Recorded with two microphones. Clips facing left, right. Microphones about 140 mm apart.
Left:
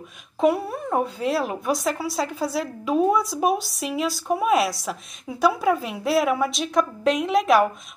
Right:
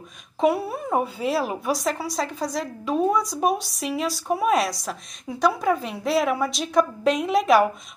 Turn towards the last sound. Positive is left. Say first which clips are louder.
# even
turn(degrees=0)  # may be behind; listen again after turning